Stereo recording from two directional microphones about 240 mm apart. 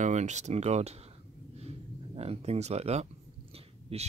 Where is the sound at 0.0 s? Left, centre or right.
Right.